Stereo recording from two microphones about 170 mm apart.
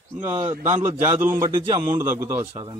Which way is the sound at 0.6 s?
45° right (ahead or behind).